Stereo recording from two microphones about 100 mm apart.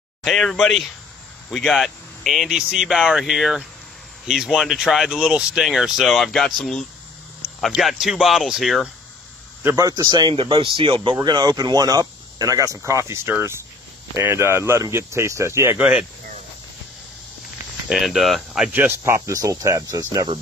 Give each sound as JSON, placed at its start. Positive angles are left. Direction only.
{"t": 0.2, "sound": "speech", "side_deg": 5}
{"t": 9.8, "sound": "speech", "side_deg": -35}
{"t": 10.0, "sound": "speech", "side_deg": -50}
{"t": 11.2, "sound": "speech", "side_deg": -45}
{"t": 15.8, "sound": "speech", "side_deg": -10}
{"t": 17.8, "sound": "speech", "side_deg": 0}
{"t": 18.7, "sound": "speech", "side_deg": -20}